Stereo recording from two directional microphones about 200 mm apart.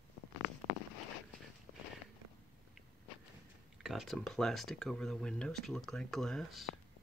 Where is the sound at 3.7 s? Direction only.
Centre (ahead or behind).